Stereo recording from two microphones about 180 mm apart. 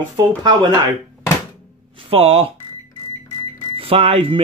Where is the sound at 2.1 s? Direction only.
35° right (ahead or behind).